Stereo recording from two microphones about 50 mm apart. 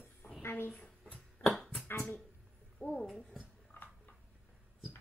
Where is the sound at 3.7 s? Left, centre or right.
Left.